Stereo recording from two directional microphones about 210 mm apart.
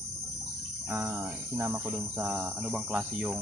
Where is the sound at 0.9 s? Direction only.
10° right (ahead or behind).